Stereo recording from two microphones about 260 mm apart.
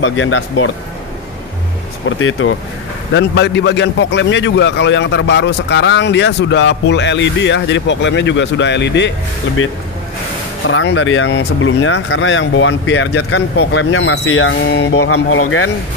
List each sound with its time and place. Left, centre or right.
0.0 s a man's voice: left
2.0 s a man's voice: left
10.7 s a man's voice: left
15.0 s speech: left